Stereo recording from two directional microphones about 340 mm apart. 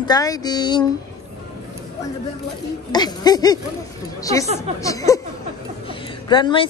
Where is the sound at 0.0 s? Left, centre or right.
Centre.